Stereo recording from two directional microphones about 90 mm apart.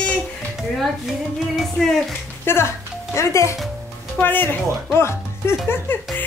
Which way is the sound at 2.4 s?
30° left (ahead or behind).